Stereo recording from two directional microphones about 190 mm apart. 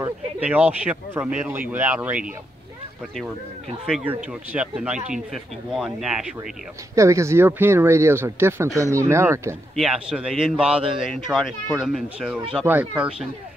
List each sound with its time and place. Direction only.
0.0 s speech: 10° right (ahead or behind)
3.8 s speech: 5° right (ahead or behind)
7.0 s speech: 15° right (ahead or behind)
9.8 s speech: 5° right (ahead or behind)